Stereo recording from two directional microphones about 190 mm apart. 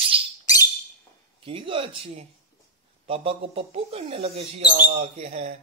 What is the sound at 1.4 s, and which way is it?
Speech, 30° right (ahead or behind).